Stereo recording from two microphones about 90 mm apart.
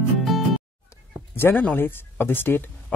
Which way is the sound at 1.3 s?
20° left (ahead or behind).